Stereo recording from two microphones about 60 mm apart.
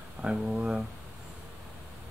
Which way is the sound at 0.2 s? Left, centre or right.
Centre.